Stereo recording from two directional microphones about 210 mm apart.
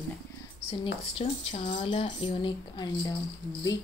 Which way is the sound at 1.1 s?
20° left (ahead or behind).